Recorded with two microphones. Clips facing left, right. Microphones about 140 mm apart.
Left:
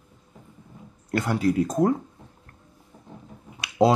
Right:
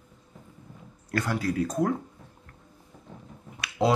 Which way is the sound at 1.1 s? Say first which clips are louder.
Left 5 dB; 25° left (ahead or behind).